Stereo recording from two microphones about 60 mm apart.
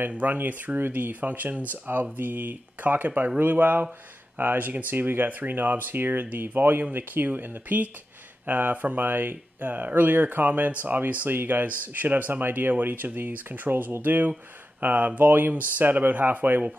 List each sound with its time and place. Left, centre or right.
0.1 s speech: right